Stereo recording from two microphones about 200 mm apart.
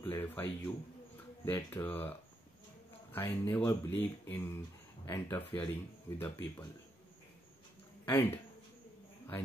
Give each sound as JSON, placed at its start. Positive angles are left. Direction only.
{"t": 0.0, "sound": "music", "side_deg": 10}
{"t": 1.4, "sound": "speech", "side_deg": 10}
{"t": 8.1, "sound": "speech", "side_deg": 10}